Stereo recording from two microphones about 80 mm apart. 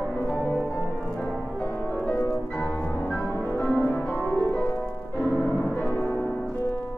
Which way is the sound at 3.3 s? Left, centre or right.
Left.